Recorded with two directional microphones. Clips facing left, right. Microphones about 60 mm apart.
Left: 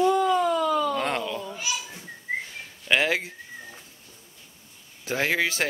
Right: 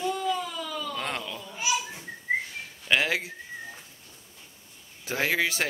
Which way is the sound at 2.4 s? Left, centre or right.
Centre.